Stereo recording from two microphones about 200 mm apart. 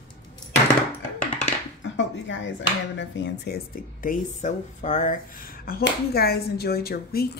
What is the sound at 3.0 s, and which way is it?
Speech, 50° left (ahead or behind).